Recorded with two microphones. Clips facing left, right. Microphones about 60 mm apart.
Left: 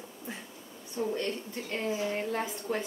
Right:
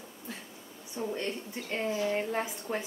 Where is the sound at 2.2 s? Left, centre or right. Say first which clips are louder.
Even; centre.